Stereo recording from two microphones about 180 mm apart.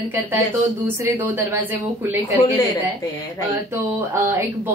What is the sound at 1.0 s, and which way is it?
A woman's voice, 10° right (ahead or behind).